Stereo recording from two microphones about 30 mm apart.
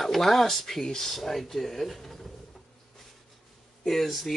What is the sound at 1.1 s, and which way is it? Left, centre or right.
Speech, centre.